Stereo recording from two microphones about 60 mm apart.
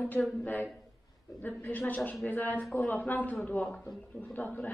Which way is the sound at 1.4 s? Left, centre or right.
Left.